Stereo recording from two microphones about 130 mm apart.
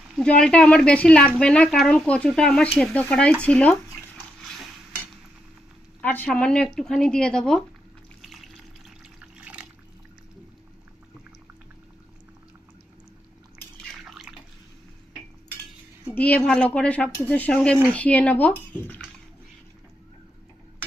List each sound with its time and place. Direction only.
0.1 s a woman's voice: 5° left (ahead or behind)
3.4 s a sound: 10° left (ahead or behind)
5.9 s speech: 10° left (ahead or behind)
8.2 s water: centre (ahead or behind)
16.2 s a woman's voice: 10° left (ahead or behind)